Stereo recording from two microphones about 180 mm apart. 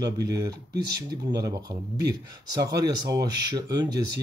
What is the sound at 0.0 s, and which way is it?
Speech, 20° right (ahead or behind).